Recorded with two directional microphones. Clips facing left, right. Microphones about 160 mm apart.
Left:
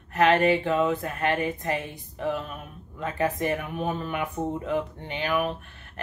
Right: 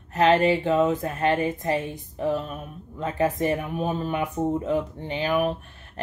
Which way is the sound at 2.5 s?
25° right (ahead or behind).